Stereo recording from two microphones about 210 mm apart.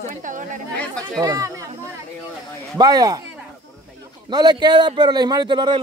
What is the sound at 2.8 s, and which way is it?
Speech, 20° right (ahead or behind).